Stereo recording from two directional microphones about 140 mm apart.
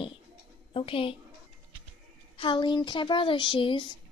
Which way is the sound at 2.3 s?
35° left (ahead or behind).